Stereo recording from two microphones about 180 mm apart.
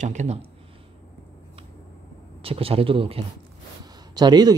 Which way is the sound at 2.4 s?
30° right (ahead or behind).